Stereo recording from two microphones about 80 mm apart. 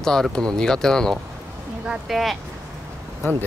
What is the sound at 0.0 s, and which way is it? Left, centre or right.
Speech, centre.